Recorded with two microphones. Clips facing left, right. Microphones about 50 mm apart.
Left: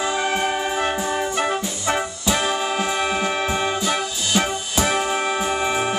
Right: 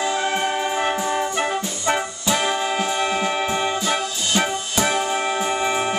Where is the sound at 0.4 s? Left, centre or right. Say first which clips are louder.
Even; centre.